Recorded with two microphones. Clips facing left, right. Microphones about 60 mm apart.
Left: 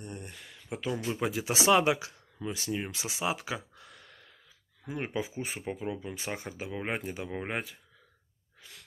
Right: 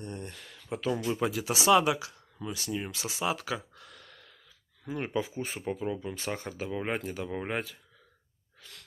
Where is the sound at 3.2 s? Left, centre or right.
Left.